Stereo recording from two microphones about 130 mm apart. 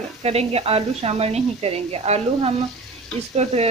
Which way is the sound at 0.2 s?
50° right (ahead or behind).